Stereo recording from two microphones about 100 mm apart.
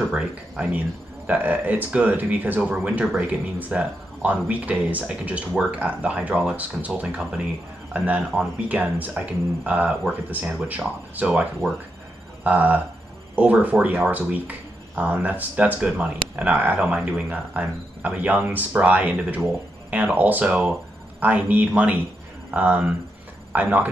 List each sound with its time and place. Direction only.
0.1 s speech: 10° right (ahead or behind)